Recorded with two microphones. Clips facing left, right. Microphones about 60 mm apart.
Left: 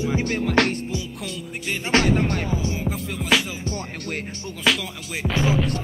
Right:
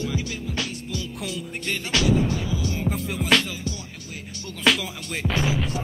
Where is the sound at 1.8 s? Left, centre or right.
Left.